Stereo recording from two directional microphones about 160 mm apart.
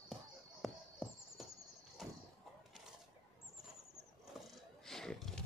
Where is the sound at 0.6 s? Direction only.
Centre (ahead or behind).